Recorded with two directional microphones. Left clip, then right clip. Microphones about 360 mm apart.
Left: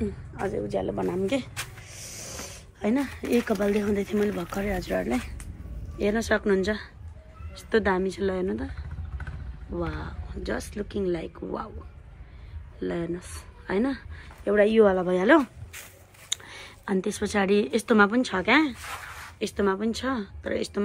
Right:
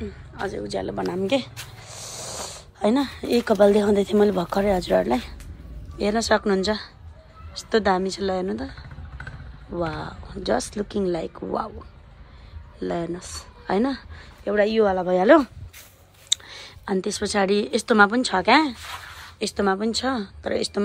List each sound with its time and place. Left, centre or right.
0.0 s speech: centre
1.9 s a sound: right
2.1 s speech: centre
9.8 s speech: centre
12.7 s a woman's voice: centre